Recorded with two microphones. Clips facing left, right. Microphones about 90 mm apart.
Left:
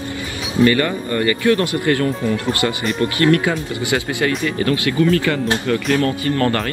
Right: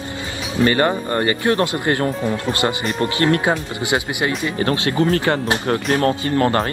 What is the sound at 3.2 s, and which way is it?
Speech, 25° right (ahead or behind).